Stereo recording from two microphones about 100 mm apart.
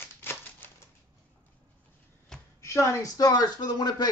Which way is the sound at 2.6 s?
30° left (ahead or behind).